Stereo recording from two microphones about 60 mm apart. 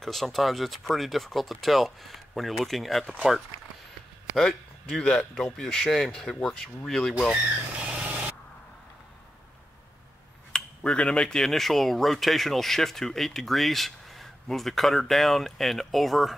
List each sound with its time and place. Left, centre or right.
0.0 s speech: centre
4.4 s speech: centre
7.8 s a sound: right
10.5 s speech: centre